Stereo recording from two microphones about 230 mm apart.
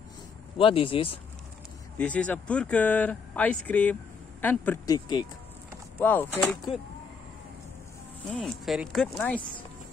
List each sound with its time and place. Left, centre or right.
0.6 s speech: left
2.0 s speech: centre
8.3 s speech: centre